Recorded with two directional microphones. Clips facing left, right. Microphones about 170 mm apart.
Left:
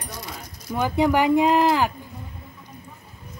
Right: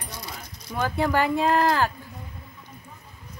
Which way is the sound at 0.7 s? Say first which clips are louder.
Left 4 dB; 15° left (ahead or behind).